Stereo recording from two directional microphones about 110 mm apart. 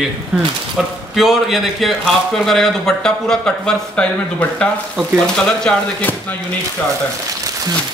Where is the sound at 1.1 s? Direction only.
Centre (ahead or behind); by 6.3 s 15° left (ahead or behind).